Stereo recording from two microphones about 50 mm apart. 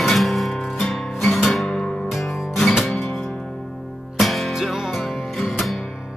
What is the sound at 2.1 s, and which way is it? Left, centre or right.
Music, centre.